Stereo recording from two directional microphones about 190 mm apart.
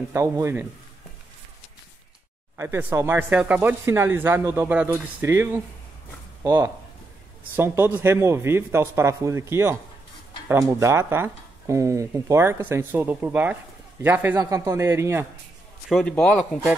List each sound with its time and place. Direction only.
0.1 s speech: 15° right (ahead or behind)
2.5 s speech: 10° right (ahead or behind)
15.9 s speech: 5° left (ahead or behind)